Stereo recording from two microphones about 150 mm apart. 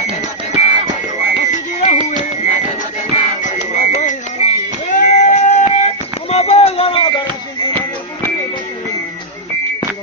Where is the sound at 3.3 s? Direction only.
55° left (ahead or behind).